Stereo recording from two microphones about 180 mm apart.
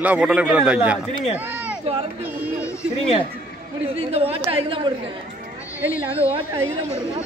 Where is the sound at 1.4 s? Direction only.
10° right (ahead or behind).